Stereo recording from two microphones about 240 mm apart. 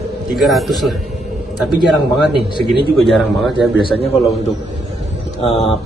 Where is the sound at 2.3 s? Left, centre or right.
Centre.